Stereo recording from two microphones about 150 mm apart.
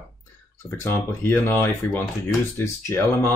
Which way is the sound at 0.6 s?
15° left (ahead or behind).